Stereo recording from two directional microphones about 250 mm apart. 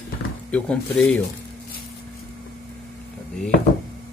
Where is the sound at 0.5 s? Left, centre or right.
Centre.